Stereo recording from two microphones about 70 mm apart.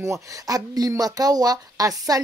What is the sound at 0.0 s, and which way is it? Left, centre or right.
Speech, right.